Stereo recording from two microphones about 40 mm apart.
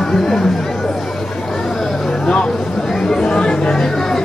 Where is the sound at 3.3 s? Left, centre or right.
Left.